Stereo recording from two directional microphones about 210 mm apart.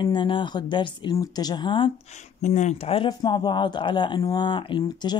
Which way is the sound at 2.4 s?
35° left (ahead or behind).